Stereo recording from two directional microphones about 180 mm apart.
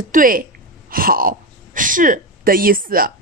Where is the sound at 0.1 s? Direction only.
50° right (ahead or behind).